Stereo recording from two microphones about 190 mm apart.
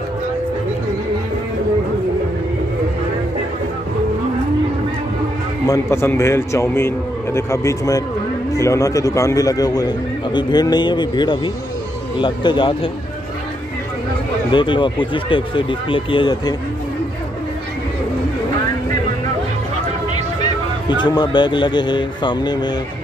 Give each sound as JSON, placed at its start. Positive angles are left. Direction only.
{"t": 5.7, "sound": "a man's voice", "side_deg": 15}
{"t": 14.5, "sound": "a man's voice", "side_deg": 25}
{"t": 21.0, "sound": "a man's voice", "side_deg": 20}